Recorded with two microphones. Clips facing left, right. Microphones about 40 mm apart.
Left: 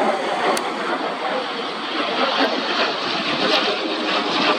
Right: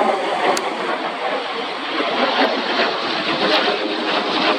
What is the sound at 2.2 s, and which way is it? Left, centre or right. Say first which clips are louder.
Vehicle: right 2 dB; centre.